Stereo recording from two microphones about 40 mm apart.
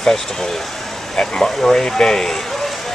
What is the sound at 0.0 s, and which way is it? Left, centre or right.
Speech, centre.